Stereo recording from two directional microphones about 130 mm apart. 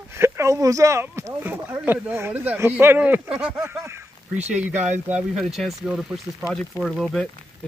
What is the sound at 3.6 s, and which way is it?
Speech, 20° right (ahead or behind).